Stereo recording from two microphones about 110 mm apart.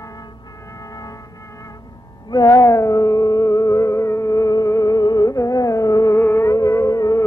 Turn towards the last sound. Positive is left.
turn(degrees=35)  # may be behind; listen again after turning